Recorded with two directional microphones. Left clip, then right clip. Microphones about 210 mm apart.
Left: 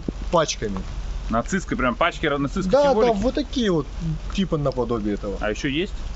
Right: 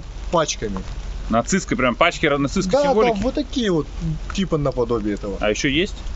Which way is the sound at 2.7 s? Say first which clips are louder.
Even; 10° left (ahead or behind).